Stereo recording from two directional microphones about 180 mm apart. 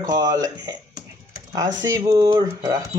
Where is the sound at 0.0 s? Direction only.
20° right (ahead or behind).